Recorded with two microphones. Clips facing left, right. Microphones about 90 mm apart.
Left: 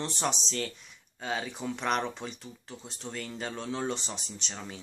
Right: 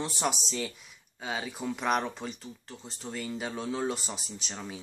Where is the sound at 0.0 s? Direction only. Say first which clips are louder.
Right 1 dB; 5° right (ahead or behind).